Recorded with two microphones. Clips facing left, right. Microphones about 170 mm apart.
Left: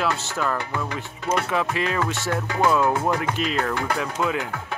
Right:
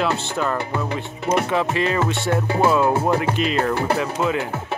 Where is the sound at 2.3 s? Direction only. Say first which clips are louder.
Right 5 dB; 30° right (ahead or behind).